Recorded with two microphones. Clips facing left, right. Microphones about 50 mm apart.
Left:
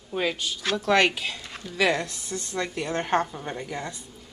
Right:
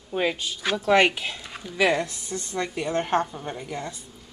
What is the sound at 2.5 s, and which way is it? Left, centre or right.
A woman's voice, centre.